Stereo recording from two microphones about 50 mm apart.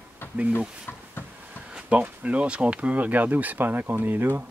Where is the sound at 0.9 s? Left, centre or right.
Left.